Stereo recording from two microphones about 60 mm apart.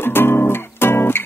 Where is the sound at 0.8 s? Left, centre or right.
Left.